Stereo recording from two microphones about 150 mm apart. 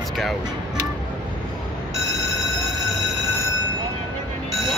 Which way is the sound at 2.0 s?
20° left (ahead or behind).